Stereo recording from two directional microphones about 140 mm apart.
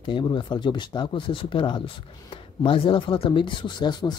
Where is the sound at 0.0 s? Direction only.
35° left (ahead or behind).